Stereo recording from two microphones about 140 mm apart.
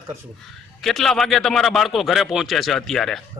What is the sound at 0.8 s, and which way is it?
A man's voice, 5° left (ahead or behind).